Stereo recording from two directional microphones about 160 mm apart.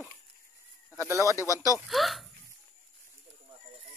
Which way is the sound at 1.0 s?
15° right (ahead or behind).